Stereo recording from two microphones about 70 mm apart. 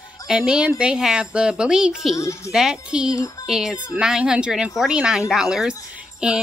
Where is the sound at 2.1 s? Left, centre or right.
Left.